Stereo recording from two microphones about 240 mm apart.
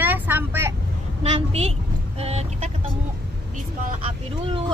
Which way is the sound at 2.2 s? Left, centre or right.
Right.